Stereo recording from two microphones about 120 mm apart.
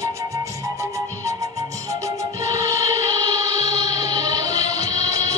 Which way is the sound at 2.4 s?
25° right (ahead or behind).